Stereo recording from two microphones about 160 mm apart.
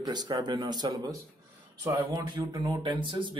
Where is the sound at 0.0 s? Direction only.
25° right (ahead or behind).